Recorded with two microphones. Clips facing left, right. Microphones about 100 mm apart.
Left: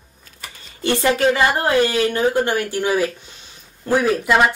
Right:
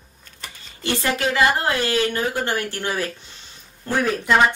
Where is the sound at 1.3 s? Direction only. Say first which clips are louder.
Left 3 dB; 25° left (ahead or behind).